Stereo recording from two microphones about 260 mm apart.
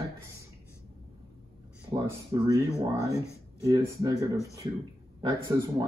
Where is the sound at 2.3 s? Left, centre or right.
Centre.